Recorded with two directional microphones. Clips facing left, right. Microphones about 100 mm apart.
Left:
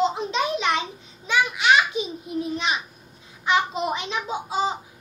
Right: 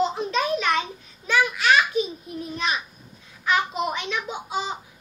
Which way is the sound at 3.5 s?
30° left (ahead or behind).